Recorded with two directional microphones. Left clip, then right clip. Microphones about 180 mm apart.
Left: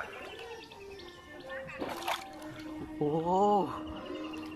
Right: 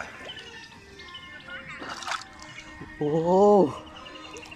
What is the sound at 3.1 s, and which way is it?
Music, 25° right (ahead or behind).